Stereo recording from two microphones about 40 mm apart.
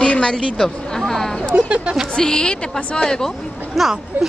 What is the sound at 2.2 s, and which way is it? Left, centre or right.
A woman's voice, centre.